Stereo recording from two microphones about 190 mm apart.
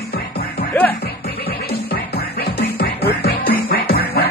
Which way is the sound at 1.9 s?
55° left (ahead or behind).